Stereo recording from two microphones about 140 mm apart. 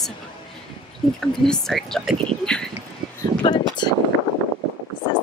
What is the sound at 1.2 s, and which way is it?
A woman's voice, 5° left (ahead or behind).